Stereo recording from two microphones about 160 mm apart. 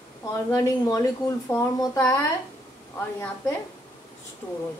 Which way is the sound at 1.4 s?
20° left (ahead or behind).